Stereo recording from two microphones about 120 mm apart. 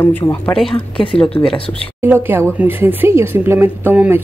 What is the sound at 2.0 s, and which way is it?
Speech, 20° right (ahead or behind).